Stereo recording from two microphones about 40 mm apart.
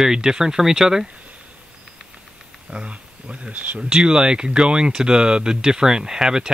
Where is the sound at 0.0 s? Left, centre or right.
Centre.